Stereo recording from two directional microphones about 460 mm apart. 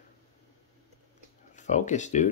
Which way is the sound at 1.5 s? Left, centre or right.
Centre.